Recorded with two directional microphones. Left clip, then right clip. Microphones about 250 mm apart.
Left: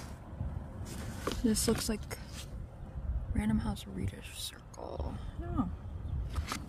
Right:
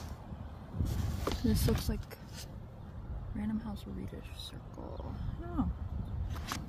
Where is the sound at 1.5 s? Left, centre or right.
Centre.